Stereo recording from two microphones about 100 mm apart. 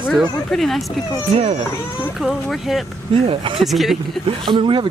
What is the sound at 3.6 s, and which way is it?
Speech, centre (ahead or behind).